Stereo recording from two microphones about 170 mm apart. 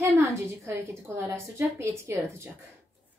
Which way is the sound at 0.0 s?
15° right (ahead or behind).